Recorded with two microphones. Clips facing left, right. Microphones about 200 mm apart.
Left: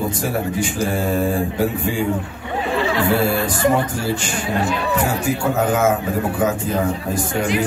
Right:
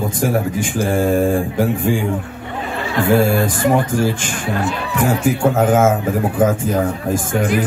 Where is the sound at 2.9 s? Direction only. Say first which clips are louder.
Right 6 dB; 50° right (ahead or behind).